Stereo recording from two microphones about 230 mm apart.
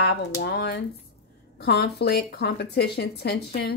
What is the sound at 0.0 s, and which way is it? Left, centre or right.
Speech, left.